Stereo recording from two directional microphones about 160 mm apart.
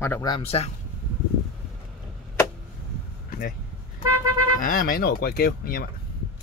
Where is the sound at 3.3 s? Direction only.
65° left (ahead or behind).